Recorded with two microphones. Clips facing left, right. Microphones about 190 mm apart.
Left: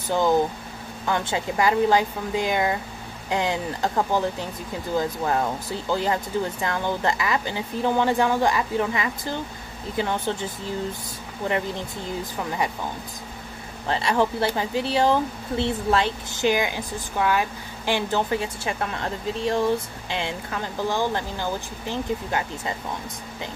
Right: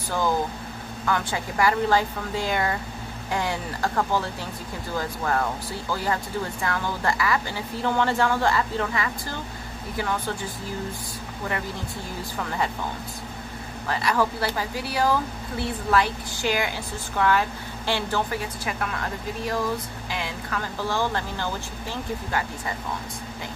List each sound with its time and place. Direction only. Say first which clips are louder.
1.0 s a woman's voice: left 2 dB; 20° left (ahead or behind)
12.4 s a woman's voice: even; 15° left (ahead or behind)
13.8 s speech: left 2 dB; 25° left (ahead or behind)